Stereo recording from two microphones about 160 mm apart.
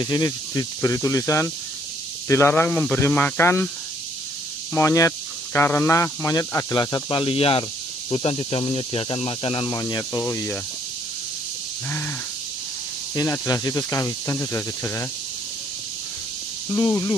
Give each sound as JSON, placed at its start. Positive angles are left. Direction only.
{"t": 0.0, "sound": "speech", "side_deg": 25}
{"t": 4.7, "sound": "speech", "side_deg": 20}
{"t": 13.1, "sound": "speech", "side_deg": 20}
{"t": 16.6, "sound": "speech", "side_deg": 20}